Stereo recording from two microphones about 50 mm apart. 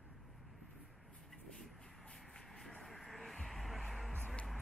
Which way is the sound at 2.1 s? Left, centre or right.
Centre.